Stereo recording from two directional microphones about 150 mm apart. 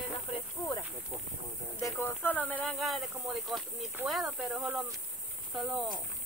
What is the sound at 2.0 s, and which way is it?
Speech, 10° left (ahead or behind).